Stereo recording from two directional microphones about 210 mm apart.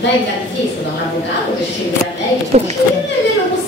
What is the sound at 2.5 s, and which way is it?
Speech, 30° right (ahead or behind).